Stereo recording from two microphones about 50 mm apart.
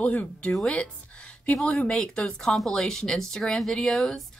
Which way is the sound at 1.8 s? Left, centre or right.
Centre.